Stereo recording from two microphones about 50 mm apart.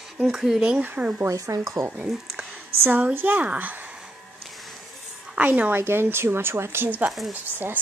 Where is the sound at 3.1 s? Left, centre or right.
Right.